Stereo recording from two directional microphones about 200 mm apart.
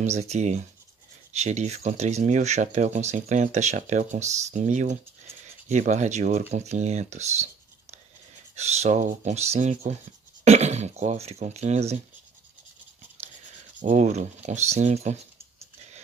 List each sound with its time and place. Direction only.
0.0 s speech: 35° right (ahead or behind)
8.5 s speech: 35° right (ahead or behind)
13.7 s speech: 40° right (ahead or behind)